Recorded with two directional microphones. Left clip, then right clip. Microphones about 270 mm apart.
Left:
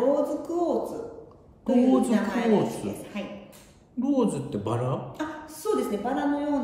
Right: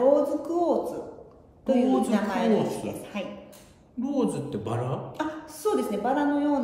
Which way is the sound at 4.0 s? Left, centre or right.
Centre.